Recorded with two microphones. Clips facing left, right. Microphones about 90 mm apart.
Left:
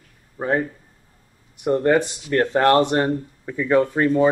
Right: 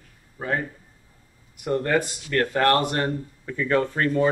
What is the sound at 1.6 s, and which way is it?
Speech, 20° left (ahead or behind).